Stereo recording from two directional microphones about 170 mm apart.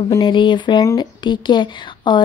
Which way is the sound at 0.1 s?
25° left (ahead or behind).